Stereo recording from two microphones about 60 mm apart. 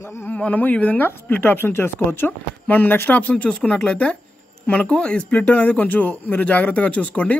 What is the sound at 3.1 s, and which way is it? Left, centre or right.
A man's voice, left.